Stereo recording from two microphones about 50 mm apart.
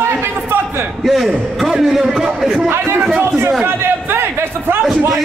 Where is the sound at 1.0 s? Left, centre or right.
Centre.